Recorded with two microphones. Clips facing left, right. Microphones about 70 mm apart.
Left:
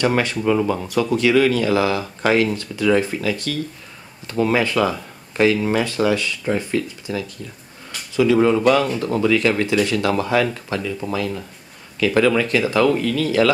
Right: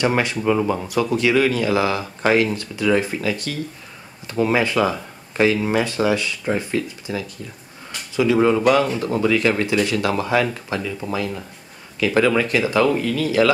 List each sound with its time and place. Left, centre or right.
0.0 s speech: centre
0.4 s speech: centre
1.1 s speech: right